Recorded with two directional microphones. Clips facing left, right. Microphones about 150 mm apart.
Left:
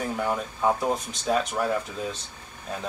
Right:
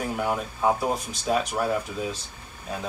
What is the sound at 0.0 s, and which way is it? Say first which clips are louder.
Speech: even; 10° right (ahead or behind).